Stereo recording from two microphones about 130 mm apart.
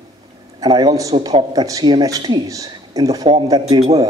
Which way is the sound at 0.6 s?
30° right (ahead or behind).